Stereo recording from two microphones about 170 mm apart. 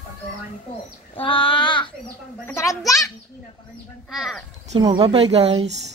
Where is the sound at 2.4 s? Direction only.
15° left (ahead or behind).